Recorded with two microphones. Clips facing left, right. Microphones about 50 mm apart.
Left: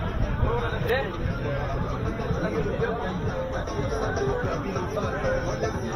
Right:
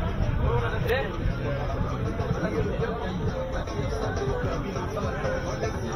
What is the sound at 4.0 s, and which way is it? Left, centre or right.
Music, left.